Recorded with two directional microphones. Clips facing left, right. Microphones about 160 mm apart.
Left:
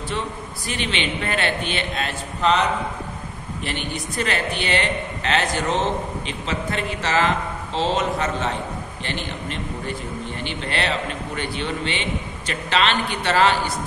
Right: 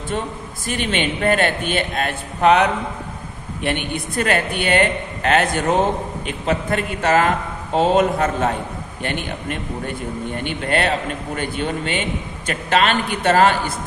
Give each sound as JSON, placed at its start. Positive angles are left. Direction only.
{"t": 0.7, "sound": "a man's voice", "side_deg": -50}
{"t": 3.6, "sound": "a man's voice", "side_deg": -55}